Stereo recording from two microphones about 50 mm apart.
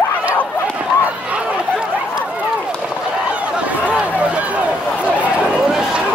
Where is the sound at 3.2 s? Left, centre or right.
Right.